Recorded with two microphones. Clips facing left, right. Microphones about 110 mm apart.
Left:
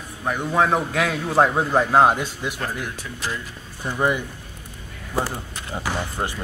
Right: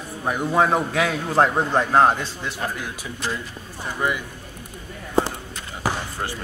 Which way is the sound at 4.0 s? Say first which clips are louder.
Left 3 dB; 25° left (ahead or behind).